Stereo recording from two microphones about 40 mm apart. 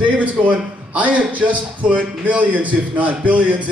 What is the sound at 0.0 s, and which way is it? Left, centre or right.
A man's voice, right.